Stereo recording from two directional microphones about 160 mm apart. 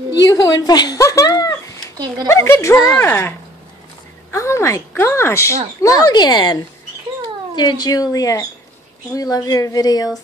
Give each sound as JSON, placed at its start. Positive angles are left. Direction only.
{"t": 0.3, "sound": "a woman's voice", "side_deg": 25}